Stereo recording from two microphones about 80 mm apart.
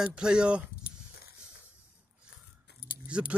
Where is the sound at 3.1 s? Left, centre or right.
Centre.